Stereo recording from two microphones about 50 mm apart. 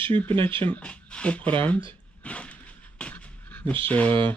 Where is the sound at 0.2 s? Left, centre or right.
Left.